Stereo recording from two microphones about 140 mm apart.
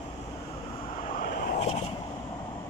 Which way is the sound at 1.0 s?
80° left.